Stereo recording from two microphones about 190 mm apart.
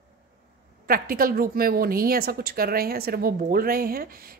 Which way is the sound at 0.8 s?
50° right (ahead or behind).